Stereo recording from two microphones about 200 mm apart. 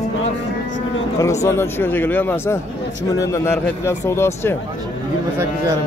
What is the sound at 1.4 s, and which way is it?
Speech, 15° left (ahead or behind).